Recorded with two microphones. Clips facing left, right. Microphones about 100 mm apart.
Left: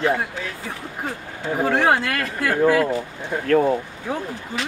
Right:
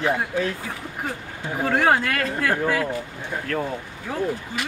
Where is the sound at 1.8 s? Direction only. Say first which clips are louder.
Even; 15° left (ahead or behind).